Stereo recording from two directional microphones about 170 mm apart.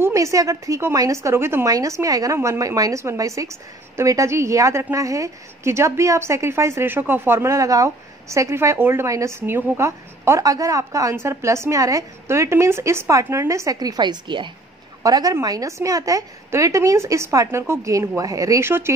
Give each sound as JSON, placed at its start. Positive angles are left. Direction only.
{"t": 0.0, "sound": "a woman's voice", "side_deg": -20}